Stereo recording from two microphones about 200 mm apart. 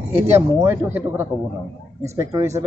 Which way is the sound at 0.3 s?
10° right (ahead or behind).